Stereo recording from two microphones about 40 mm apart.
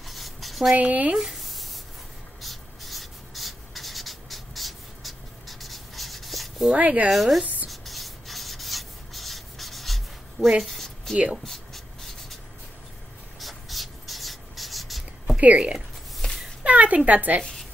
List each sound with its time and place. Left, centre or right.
0.0 s writing: centre
0.7 s speech: right
1.1 s a sound: centre
2.4 s writing: centre
6.7 s speech: right
7.1 s speech: centre
7.6 s rub: centre
10.6 s a sound: centre
11.4 s writing: centre
13.4 s writing: centre
15.3 s a woman's voice: right